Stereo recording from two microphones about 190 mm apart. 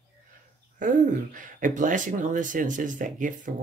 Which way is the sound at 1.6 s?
45° right (ahead or behind).